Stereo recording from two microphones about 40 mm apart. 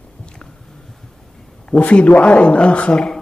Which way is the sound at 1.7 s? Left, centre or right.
Left.